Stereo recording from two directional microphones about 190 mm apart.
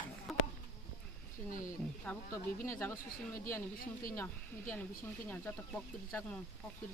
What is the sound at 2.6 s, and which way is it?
Speech, 15° left (ahead or behind).